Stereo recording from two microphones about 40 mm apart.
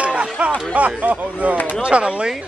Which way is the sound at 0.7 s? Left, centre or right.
Right.